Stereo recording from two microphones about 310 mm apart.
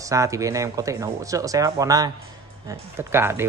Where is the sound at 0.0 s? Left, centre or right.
Centre.